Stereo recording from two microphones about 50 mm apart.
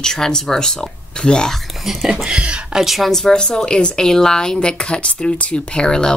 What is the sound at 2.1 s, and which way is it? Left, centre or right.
Speech, centre.